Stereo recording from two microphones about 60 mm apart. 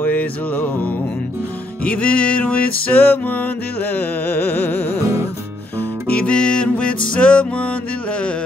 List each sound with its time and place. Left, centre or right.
0.0 s music: left
1.9 s music: left
5.0 s music: right
6.1 s music: centre